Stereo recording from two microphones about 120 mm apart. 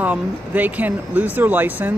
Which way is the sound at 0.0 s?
15° right (ahead or behind).